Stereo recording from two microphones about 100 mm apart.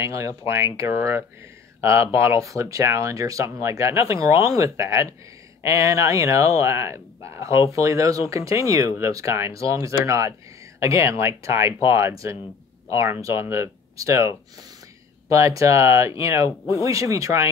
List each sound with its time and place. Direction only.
0.0 s speech: 30° right (ahead or behind)